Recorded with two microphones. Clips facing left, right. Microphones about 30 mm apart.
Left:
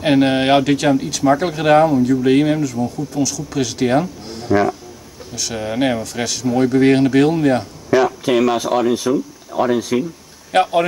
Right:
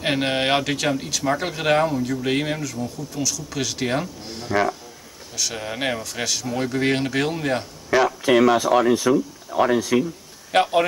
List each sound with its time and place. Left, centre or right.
0.0 s speech: centre
9.9 s a man's voice: centre
10.5 s speech: centre